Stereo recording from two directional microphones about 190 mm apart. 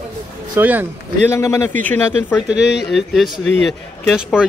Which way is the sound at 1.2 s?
15° left (ahead or behind).